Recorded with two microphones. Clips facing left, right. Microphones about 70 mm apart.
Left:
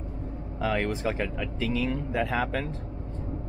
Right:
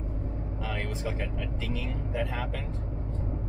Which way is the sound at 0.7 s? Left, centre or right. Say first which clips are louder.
Left 8 dB; left.